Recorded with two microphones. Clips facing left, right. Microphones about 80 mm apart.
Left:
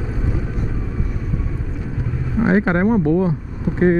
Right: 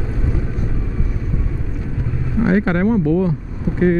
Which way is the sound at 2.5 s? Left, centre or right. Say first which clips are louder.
Even; left.